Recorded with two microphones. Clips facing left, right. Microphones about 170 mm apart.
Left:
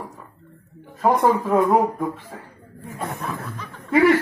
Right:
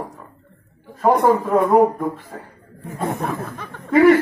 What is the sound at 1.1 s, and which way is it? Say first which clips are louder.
Speech: right 2 dB; 60° right (ahead or behind).